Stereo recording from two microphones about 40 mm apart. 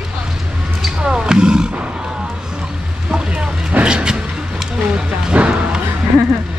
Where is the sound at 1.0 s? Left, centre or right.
Right.